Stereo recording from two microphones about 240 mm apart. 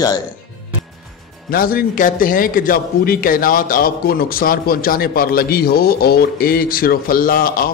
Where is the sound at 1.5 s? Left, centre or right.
Left.